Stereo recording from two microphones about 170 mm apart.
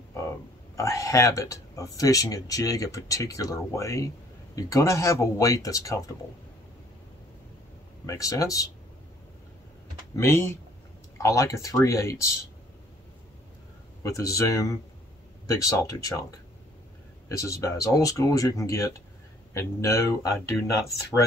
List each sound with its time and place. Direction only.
0.7 s speech: 20° left (ahead or behind)
8.1 s speech: 20° left (ahead or behind)
10.1 s speech: 15° left (ahead or behind)
14.0 s speech: 20° left (ahead or behind)
17.4 s speech: 20° left (ahead or behind)